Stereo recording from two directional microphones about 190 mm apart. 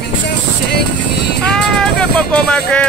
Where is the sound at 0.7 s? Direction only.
60° left (ahead or behind).